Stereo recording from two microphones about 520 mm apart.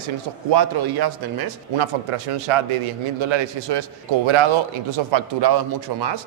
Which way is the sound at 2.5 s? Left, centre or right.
Right.